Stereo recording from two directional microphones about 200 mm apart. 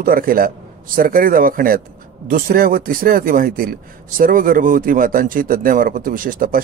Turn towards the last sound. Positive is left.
turn(degrees=-45)  # may be behind; listen again after turning